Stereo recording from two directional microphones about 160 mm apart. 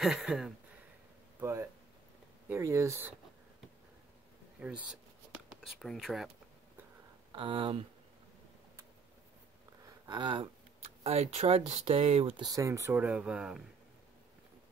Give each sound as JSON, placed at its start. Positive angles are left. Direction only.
{"t": 0.0, "sound": "speech", "side_deg": 0}
{"t": 1.4, "sound": "speech", "side_deg": -15}
{"t": 4.6, "sound": "speech", "side_deg": -10}
{"t": 7.3, "sound": "speech", "side_deg": -35}
{"t": 10.0, "sound": "speech", "side_deg": -30}
{"t": 12.4, "sound": "speech", "side_deg": -20}